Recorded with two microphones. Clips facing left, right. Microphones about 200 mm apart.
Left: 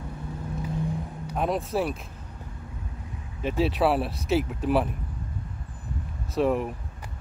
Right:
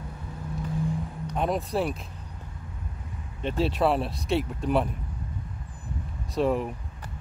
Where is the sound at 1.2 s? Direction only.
Centre (ahead or behind).